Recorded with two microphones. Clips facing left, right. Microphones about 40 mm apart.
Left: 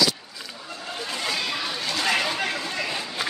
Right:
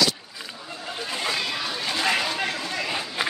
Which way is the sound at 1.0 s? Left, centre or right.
Centre.